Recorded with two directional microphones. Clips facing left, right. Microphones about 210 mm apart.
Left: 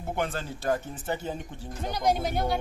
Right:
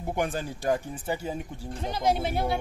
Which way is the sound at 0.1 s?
15° right (ahead or behind).